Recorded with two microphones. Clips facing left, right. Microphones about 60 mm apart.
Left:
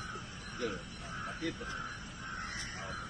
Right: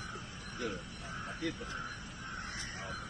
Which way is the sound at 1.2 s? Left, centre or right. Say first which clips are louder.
Even; centre.